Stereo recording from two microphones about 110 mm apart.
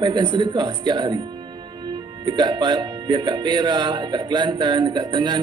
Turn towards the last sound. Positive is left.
turn(degrees=-45)  # may be behind; listen again after turning